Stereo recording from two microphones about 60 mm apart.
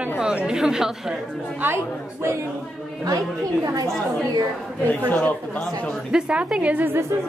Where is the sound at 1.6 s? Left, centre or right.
Right.